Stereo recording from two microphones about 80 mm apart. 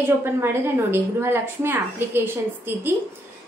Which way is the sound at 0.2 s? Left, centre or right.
Right.